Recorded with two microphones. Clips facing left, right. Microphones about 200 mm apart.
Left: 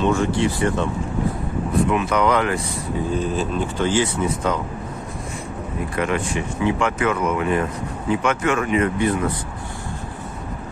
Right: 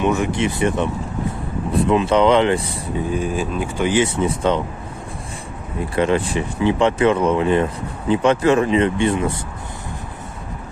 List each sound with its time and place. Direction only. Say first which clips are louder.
0.0 s speech: even; 15° right (ahead or behind)
1.9 s speech: right 7 dB; 25° right (ahead or behind)
3.1 s speech: right 1 dB; 10° right (ahead or behind); by 4.6 s 25° right (ahead or behind)
5.9 s speech: right 5 dB; 30° right (ahead or behind)